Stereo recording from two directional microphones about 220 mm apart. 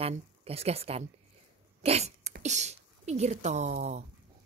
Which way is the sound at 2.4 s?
30° right (ahead or behind).